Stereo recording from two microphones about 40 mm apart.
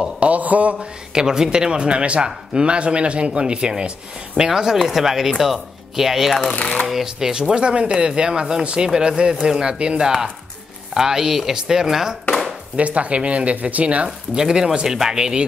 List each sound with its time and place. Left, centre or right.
0.2 s speech: right
0.7 s a man's voice: centre
6.6 s speech: left
6.9 s a man's voice: centre
12.7 s speech: right
14.0 s speech: centre